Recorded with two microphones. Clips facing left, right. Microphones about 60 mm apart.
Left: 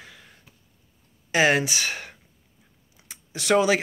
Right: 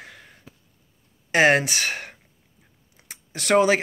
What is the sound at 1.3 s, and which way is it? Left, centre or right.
Speech, right.